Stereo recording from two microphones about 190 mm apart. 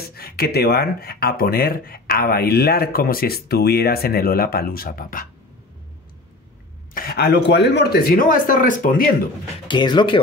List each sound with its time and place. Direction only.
0.0 s speech: 55° left (ahead or behind)
6.9 s speech: 50° left (ahead or behind)
9.7 s speech: 25° left (ahead or behind)